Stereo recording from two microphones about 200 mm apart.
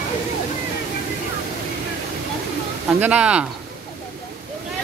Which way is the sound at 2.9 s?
5° right (ahead or behind).